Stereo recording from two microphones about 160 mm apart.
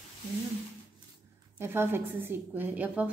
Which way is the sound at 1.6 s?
15° right (ahead or behind).